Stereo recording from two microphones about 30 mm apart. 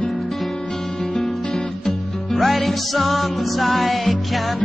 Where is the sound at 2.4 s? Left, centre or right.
Centre.